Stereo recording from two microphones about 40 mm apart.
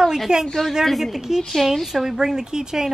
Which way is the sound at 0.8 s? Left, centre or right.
Centre.